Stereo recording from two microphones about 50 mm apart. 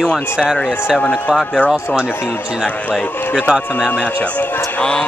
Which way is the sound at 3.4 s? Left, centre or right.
Centre.